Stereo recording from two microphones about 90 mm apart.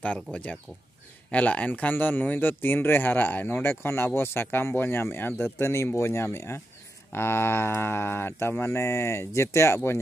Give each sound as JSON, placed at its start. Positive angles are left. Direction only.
{"t": 0.0, "sound": "speech", "side_deg": 15}